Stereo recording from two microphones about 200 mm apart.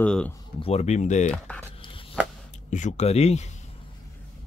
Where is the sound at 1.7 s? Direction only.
25° left (ahead or behind).